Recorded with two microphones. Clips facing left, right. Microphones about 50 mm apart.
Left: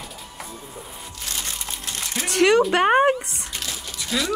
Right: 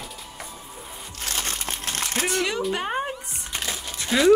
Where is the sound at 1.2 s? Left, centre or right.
Right.